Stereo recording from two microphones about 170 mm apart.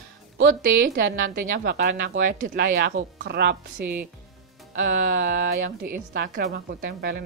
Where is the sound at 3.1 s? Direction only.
75° right (ahead or behind).